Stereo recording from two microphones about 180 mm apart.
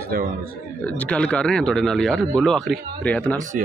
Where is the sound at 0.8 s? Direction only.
10° left (ahead or behind).